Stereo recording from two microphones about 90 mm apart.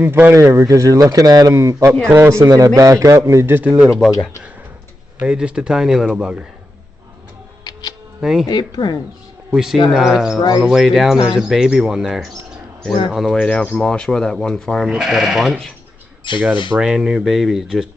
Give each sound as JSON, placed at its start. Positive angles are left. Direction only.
{"t": 0.0, "sound": "a man's voice", "side_deg": -20}
{"t": 0.3, "sound": "a man's voice", "side_deg": -30}
{"t": 5.2, "sound": "speech", "side_deg": -10}
{"t": 8.2, "sound": "speech", "side_deg": -5}
{"t": 8.5, "sound": "speech", "side_deg": 55}
{"t": 9.5, "sound": "speech", "side_deg": -5}
{"t": 13.4, "sound": "speech", "side_deg": 10}
{"t": 14.9, "sound": "speech", "side_deg": -5}
{"t": 16.3, "sound": "speech", "side_deg": 60}
{"t": 16.7, "sound": "speech", "side_deg": -5}